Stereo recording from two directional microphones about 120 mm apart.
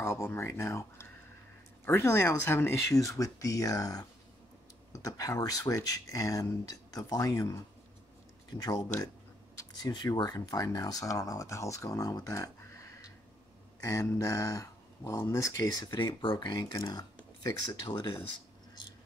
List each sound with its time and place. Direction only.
0.0 s speech: 20° left (ahead or behind)